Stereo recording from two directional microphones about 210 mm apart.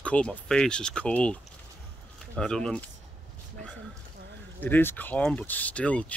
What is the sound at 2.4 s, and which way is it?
Speech, 5° left (ahead or behind).